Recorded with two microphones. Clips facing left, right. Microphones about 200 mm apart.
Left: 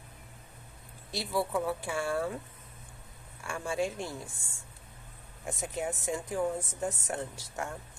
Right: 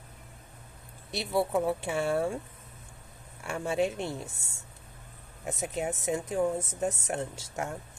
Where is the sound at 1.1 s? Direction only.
25° right (ahead or behind).